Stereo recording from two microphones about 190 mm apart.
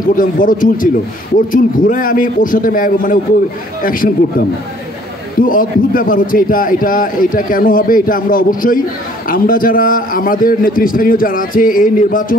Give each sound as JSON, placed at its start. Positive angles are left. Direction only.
{"t": 0.0, "sound": "a man's voice", "side_deg": 45}